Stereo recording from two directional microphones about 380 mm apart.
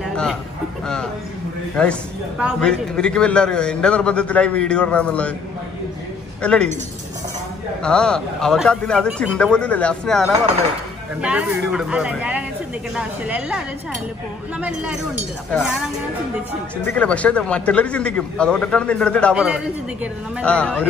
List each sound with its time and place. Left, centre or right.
0.0 s a sound: centre
1.8 s speech: centre
6.4 s speech: centre
7.8 s speech: centre
16.9 s speech: centre